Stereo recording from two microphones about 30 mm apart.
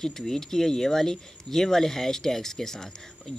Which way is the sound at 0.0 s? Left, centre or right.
Centre.